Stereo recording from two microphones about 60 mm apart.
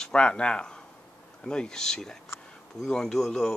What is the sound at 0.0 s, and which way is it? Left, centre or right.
Speech, centre.